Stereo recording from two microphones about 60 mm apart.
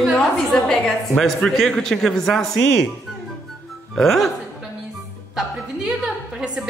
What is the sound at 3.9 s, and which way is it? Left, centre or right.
Speech, centre.